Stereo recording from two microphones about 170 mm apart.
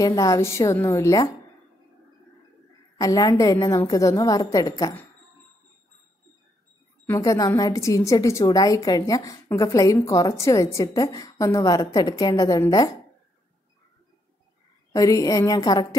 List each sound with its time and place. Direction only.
0.0 s a woman's voice: 20° left (ahead or behind)
3.0 s a woman's voice: 20° left (ahead or behind)
7.1 s a woman's voice: 20° left (ahead or behind)
14.9 s a woman's voice: 20° left (ahead or behind)